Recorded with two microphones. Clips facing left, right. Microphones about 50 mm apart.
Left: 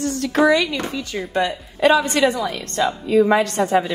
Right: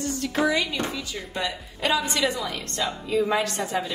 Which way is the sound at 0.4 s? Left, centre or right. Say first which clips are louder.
Left 8 dB; left.